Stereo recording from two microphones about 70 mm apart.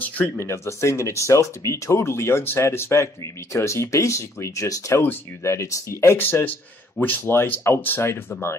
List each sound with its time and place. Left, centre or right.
0.0 s a sound: left
0.5 s speech: left
6.1 s speech: left